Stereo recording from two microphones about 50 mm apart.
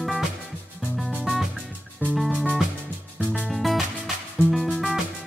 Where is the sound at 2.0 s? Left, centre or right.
Left.